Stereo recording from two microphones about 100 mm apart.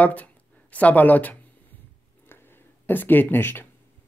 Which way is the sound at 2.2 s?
20° left (ahead or behind).